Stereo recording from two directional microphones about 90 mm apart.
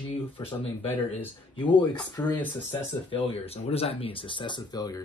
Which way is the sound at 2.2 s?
25° left (ahead or behind).